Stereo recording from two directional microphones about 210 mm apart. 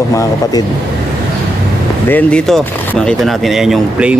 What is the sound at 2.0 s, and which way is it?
Speech, 5° left (ahead or behind).